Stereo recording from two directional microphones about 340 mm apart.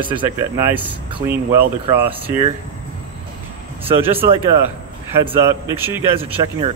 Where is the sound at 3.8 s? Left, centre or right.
Centre.